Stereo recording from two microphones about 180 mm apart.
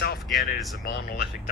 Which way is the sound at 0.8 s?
65° left (ahead or behind).